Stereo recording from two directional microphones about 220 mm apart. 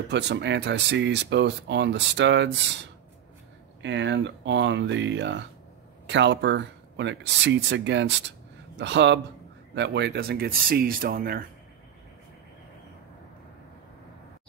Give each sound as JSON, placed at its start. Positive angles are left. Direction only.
{"t": 0.1, "sound": "speech", "side_deg": -55}
{"t": 3.8, "sound": "speech", "side_deg": -55}